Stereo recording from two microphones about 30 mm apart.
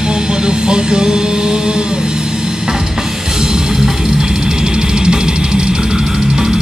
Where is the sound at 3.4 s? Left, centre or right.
Right.